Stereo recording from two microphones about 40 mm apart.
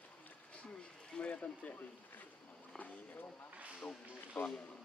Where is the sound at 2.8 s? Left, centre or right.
Left.